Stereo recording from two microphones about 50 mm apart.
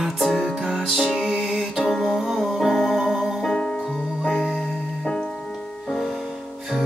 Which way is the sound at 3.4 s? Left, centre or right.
Centre.